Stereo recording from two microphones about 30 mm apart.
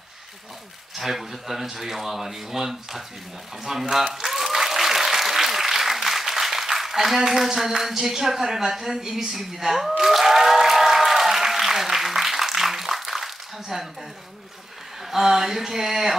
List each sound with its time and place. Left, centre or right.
0.9 s speech: centre
3.6 s applause: centre
15.0 s speech: centre